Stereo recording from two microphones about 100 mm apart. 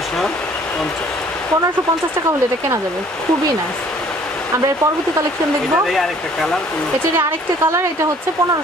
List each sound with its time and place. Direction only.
5.9 s speech: 5° left (ahead or behind)
7.2 s a woman's voice: 25° right (ahead or behind)